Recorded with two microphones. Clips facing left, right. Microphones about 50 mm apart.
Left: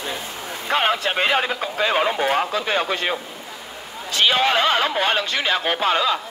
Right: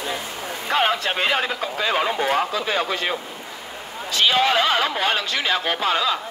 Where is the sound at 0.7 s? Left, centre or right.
Centre.